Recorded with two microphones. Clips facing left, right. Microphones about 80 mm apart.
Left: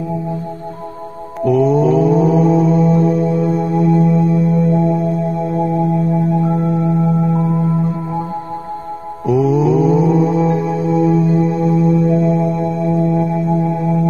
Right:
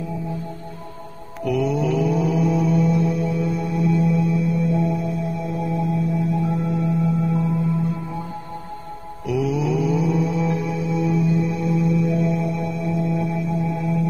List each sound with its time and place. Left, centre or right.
1.4 s mantra: left
4.6 s music: left
9.2 s mantra: left